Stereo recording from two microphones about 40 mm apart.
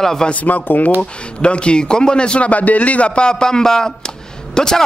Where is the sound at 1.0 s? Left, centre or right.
Left.